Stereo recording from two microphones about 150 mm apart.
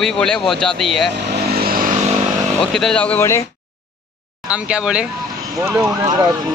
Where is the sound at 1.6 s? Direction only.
75° right (ahead or behind).